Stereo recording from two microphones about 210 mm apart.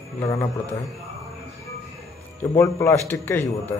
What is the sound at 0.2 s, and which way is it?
Speech, 15° left (ahead or behind).